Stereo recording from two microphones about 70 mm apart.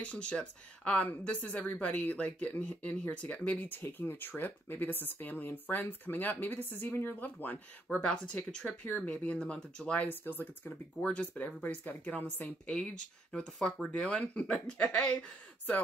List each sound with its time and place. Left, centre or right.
0.0 s speech: centre
7.9 s speech: centre
8.8 s speech: centre
10.0 s speech: left
12.7 s speech: centre